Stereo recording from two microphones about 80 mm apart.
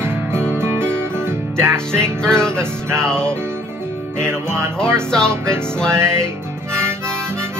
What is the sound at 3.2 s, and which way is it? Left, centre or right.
Music, right.